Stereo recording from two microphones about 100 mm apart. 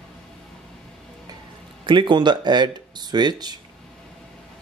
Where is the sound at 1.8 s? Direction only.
55° right (ahead or behind).